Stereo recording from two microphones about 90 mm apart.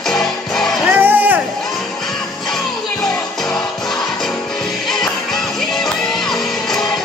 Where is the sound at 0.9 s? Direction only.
20° right (ahead or behind).